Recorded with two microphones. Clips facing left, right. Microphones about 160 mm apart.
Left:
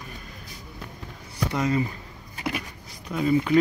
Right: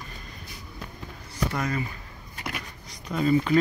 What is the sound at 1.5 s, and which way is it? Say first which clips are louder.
Speech: left 7 dB; 20° left (ahead or behind).